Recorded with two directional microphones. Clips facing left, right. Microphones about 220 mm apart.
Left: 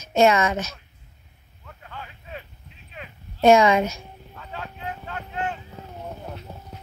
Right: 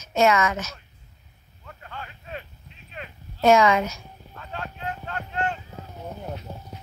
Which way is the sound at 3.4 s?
25° left (ahead or behind).